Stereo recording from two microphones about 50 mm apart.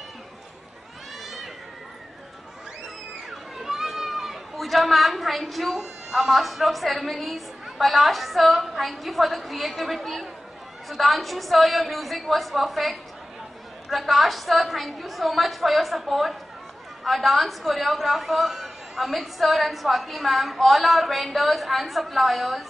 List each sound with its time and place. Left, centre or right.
1.2 s cat: centre
3.3 s chatter: centre
7.8 s a woman's voice: centre